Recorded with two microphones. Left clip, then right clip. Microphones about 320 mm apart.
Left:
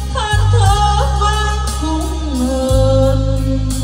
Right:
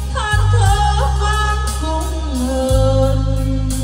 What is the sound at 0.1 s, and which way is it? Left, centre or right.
Music, centre.